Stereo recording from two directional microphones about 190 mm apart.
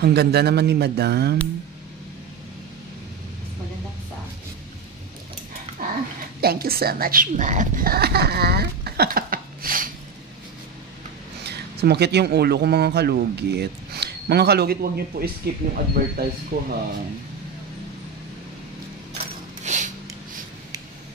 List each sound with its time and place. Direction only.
0.0 s speech: 60° right (ahead or behind)
5.8 s dog: 50° right (ahead or behind)
6.4 s a woman's voice: 55° right (ahead or behind)
11.4 s a woman's voice: 60° right (ahead or behind)
19.6 s a sound: 40° right (ahead or behind)